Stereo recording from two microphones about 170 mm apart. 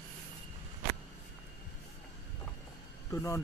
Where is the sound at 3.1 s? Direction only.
20° left (ahead or behind).